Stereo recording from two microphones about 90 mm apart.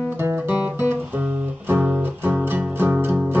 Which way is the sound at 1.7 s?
20° right (ahead or behind).